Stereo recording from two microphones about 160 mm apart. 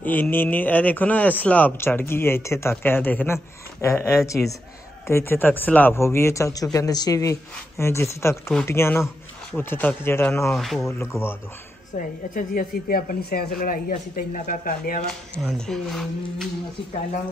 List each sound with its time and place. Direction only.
0.0 s a man's voice: 10° left (ahead or behind)
10.5 s speech: centre (ahead or behind)
10.9 s a man's voice: 15° left (ahead or behind)
12.4 s speech: 65° left (ahead or behind)
15.3 s speech: 5° left (ahead or behind)